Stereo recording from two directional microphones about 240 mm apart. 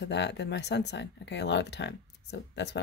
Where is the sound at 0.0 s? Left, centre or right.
Left.